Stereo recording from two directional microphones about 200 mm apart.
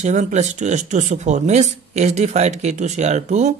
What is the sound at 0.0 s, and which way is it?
Speech, 35° right (ahead or behind).